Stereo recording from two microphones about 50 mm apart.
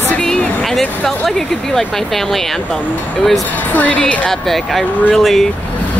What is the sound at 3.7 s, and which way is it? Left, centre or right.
Speech, left.